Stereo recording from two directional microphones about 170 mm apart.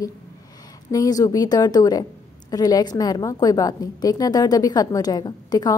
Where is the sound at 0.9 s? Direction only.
20° left (ahead or behind).